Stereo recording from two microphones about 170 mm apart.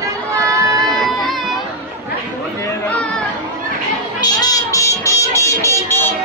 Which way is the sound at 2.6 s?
10° left (ahead or behind).